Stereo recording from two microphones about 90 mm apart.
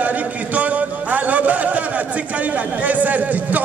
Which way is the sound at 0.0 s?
15° right (ahead or behind).